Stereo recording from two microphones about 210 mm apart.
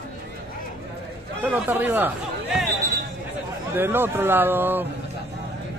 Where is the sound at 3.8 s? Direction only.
10° right (ahead or behind).